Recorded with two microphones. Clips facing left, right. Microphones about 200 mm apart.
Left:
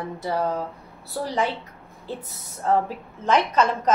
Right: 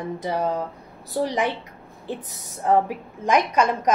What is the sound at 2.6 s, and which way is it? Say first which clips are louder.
A woman's voice: right 2 dB; 15° right (ahead or behind).